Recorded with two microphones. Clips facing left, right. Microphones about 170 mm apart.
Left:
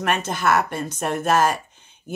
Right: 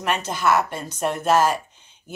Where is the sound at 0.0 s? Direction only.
55° left (ahead or behind).